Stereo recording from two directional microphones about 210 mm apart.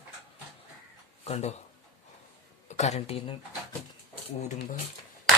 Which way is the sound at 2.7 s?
30° left (ahead or behind).